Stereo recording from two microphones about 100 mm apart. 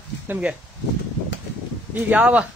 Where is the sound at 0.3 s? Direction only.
15° right (ahead or behind).